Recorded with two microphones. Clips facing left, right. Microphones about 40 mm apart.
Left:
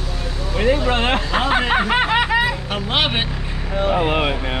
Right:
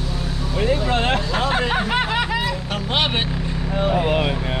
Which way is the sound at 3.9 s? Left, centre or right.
Left.